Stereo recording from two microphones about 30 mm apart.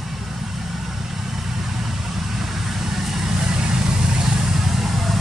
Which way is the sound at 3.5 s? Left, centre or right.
Right.